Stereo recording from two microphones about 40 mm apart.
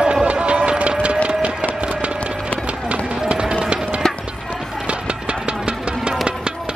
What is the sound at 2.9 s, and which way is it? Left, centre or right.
Run, right.